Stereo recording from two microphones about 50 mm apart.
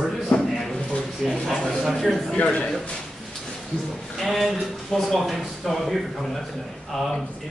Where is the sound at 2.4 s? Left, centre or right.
Left.